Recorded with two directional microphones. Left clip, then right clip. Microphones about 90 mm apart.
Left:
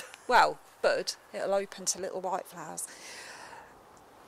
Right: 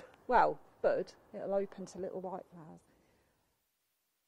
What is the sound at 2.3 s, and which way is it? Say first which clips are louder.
Speech: left 10 dB; 40° left (ahead or behind).